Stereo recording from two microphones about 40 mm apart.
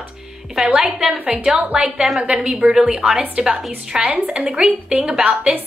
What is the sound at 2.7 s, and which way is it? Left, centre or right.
Speech, centre.